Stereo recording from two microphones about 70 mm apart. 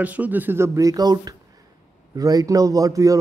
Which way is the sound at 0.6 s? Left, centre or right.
Right.